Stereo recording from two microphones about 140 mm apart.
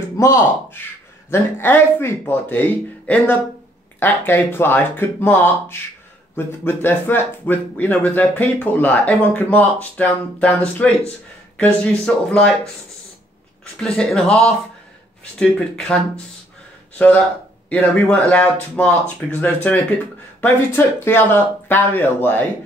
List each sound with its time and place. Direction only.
0.2 s speech: 20° left (ahead or behind)
13.7 s speech: 5° left (ahead or behind)
17.6 s speech: 10° left (ahead or behind)